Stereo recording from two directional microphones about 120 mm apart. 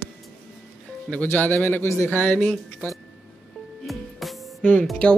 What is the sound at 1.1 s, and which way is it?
A man's voice, 15° left (ahead or behind).